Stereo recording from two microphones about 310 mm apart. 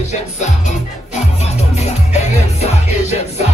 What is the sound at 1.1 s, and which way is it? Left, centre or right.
Music, left.